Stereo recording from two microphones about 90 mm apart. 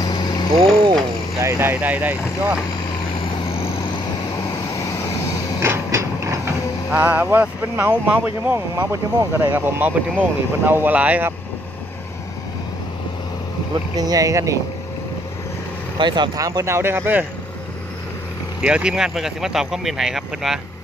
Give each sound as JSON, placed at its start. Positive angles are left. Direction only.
{"t": 0.0, "sound": "vehicle", "side_deg": 50}
{"t": 1.4, "sound": "speech", "side_deg": -30}
{"t": 5.6, "sound": "mechanisms", "side_deg": -30}
{"t": 6.9, "sound": "speech", "side_deg": -20}
{"t": 8.5, "sound": "speech", "side_deg": -35}
{"t": 9.5, "sound": "speech", "side_deg": -20}
{"t": 13.9, "sound": "speech", "side_deg": -45}
{"t": 16.0, "sound": "speech", "side_deg": -55}
{"t": 16.3, "sound": "speech", "side_deg": -40}
{"t": 18.6, "sound": "speech", "side_deg": -10}